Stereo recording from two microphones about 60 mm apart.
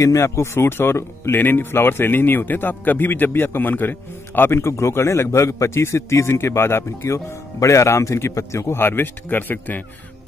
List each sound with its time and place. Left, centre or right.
0.0 s a man's voice: left
4.4 s a man's voice: left
7.6 s a man's voice: left